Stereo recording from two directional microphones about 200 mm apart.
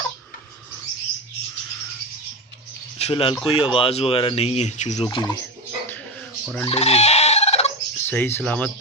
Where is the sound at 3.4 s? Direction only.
25° left (ahead or behind).